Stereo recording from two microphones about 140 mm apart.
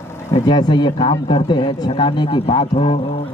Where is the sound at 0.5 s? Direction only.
30° left (ahead or behind).